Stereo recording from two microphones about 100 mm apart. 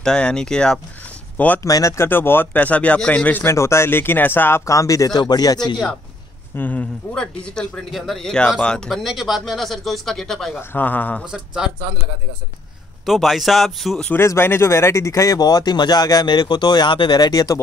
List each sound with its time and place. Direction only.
0.0 s speech: 5° left (ahead or behind)
1.6 s speech: 35° left (ahead or behind)
6.5 s a man's voice: 15° left (ahead or behind)
10.7 s speech: 20° left (ahead or behind)
11.2 s speech: 5° right (ahead or behind)
13.0 s a man's voice: centre (ahead or behind)
14.1 s speech: 25° left (ahead or behind)